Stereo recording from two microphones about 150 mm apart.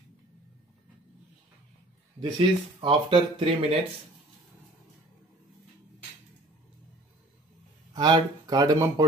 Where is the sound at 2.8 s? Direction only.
35° right (ahead or behind).